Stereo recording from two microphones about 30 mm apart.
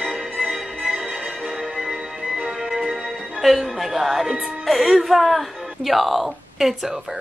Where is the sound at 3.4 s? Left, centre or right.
Centre.